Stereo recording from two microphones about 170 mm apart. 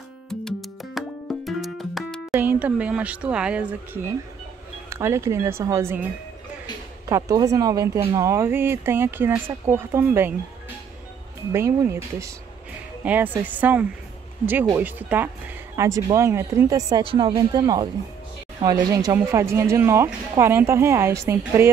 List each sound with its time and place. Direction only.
0.3 s music: 5° left (ahead or behind)
2.3 s speech: 10° right (ahead or behind)
7.1 s speech: 20° right (ahead or behind)
11.5 s a woman's voice: 15° right (ahead or behind)
17.0 s speech: 30° right (ahead or behind); by 21.6 s 15° right (ahead or behind)